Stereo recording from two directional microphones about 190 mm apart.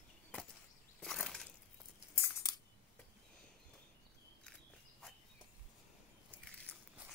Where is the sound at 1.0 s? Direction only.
Centre (ahead or behind).